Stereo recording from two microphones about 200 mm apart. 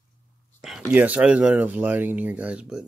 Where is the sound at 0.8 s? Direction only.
5° right (ahead or behind).